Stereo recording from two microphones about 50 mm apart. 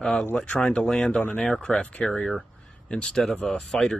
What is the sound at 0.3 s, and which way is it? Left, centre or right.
Speech, left.